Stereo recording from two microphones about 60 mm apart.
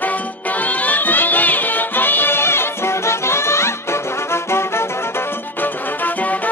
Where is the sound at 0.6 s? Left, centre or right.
Left.